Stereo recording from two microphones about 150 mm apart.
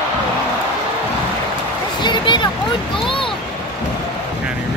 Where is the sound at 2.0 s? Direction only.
30° left (ahead or behind).